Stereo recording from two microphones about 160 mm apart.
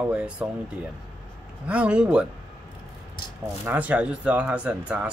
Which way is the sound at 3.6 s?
10° right (ahead or behind).